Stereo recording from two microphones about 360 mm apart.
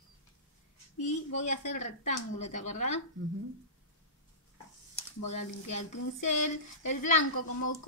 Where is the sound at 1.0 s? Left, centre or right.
Centre.